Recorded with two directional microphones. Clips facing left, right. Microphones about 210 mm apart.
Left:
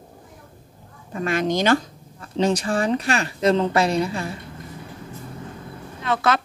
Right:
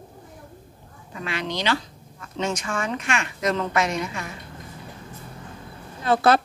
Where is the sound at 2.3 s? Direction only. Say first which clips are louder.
Left 6 dB; 35° left (ahead or behind).